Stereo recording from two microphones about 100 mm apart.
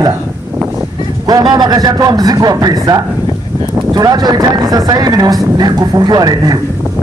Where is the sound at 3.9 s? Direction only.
45° right (ahead or behind).